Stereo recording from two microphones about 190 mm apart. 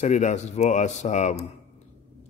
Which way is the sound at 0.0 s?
40° left (ahead or behind).